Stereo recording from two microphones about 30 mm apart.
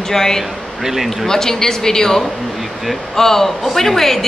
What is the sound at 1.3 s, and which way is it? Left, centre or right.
A woman's voice, centre.